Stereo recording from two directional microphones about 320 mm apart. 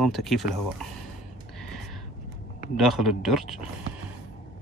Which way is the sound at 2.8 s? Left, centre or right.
Centre.